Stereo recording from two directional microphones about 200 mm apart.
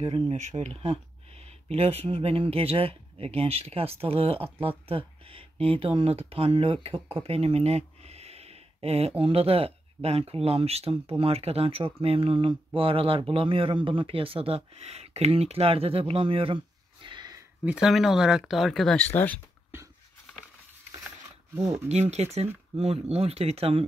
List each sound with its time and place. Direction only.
0.0 s speech: 35° right (ahead or behind); by 17.7 s 15° right (ahead or behind)
17.7 s speech: centre (ahead or behind)
21.5 s speech: 15° right (ahead or behind)
21.8 s speech: 35° right (ahead or behind)